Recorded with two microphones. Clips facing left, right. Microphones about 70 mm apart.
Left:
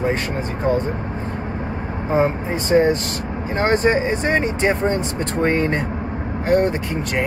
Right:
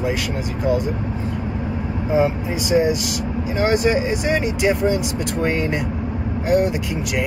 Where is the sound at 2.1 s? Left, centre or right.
Left.